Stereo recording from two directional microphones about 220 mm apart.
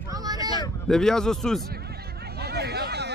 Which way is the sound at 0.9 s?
Centre (ahead or behind).